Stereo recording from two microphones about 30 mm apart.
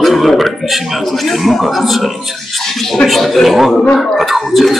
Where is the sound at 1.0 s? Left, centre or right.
Centre.